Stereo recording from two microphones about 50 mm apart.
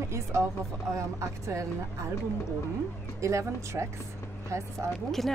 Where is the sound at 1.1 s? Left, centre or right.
Right.